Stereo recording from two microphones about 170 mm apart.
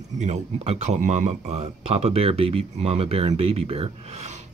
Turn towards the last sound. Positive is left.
turn(degrees=-40)  # may be behind; listen again after turning